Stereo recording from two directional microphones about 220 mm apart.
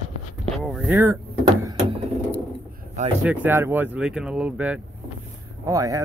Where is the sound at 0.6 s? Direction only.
Centre (ahead or behind).